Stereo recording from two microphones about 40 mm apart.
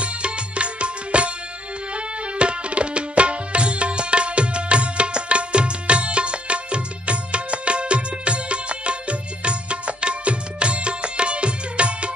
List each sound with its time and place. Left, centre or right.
0.0 s music: right
2.0 s tabla: right